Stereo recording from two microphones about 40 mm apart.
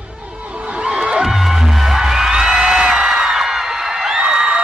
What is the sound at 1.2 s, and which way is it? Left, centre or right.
Music, centre.